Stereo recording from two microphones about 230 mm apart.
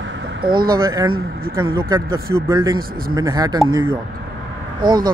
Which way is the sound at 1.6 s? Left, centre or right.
Centre.